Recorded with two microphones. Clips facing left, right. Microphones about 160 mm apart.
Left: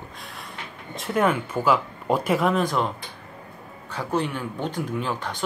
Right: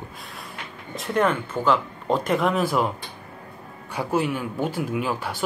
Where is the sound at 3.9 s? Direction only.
10° right (ahead or behind).